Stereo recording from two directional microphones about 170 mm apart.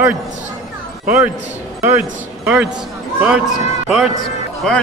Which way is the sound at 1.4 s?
40° right (ahead or behind).